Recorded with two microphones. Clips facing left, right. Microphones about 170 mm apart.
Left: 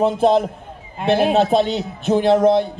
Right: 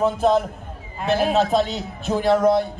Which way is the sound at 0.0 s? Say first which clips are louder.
Left 3 dB; 30° left (ahead or behind).